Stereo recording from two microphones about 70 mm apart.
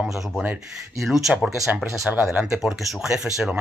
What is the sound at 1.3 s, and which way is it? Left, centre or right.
Speech, centre.